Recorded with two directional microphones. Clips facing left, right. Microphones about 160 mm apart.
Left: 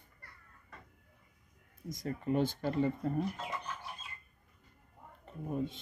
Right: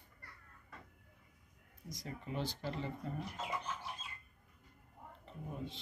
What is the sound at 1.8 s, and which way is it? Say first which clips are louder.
Speech: left 10 dB; 50° left (ahead or behind).